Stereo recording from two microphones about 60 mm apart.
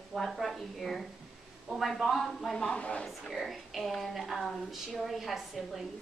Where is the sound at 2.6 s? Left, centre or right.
Centre.